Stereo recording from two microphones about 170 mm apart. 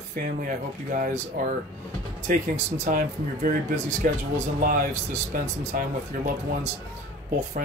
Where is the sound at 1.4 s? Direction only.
50° right (ahead or behind).